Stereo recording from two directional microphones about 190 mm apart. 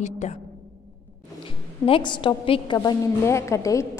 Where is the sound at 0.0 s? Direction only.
35° left (ahead or behind).